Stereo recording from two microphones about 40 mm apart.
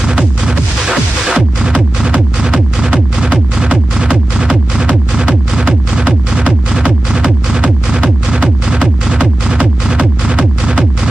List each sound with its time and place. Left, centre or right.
0.0 s music: right
7.1 s music: right
9.8 s music: centre